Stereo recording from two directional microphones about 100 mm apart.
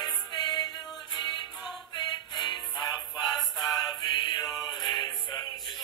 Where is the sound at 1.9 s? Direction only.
45° left (ahead or behind).